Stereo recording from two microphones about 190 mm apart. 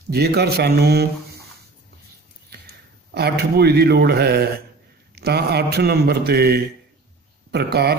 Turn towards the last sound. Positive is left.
turn(degrees=-60)  # may be behind; listen again after turning